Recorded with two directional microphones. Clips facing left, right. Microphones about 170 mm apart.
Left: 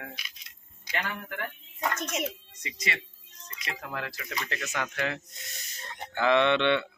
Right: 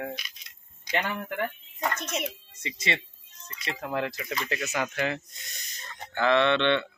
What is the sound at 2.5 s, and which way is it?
Speech, 25° right (ahead or behind).